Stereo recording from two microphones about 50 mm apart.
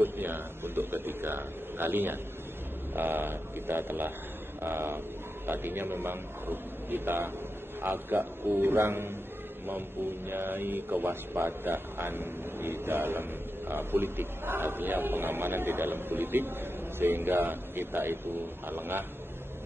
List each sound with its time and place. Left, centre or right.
0.0 s a man's voice: right